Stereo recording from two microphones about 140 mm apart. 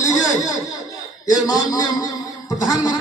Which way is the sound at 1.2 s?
30° left (ahead or behind).